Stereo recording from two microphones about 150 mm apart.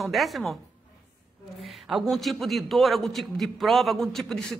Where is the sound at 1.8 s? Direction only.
Centre (ahead or behind).